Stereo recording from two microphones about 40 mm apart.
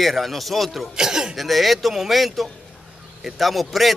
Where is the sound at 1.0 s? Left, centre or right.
Centre.